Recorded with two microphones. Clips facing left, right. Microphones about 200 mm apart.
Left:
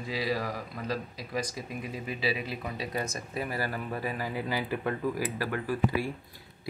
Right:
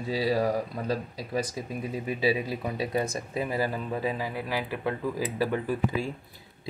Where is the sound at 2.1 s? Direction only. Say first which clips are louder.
Right 6 dB; 45° right (ahead or behind).